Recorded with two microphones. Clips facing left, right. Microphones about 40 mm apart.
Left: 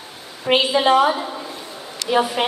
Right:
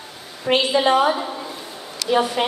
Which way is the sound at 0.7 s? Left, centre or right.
Centre.